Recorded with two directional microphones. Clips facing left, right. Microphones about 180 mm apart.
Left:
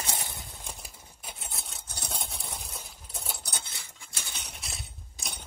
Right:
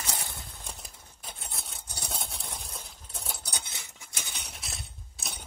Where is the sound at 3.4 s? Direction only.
15° right (ahead or behind).